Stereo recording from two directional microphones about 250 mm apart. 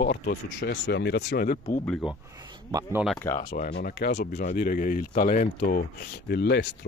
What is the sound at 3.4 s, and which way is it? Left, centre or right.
Speech, left.